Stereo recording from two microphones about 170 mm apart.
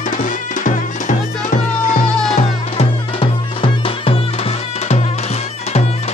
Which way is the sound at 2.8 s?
30° left (ahead or behind).